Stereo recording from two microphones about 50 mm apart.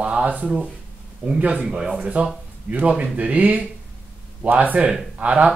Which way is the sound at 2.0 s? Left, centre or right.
Right.